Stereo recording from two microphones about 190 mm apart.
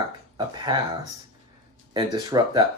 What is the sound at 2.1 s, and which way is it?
Speech, 20° right (ahead or behind).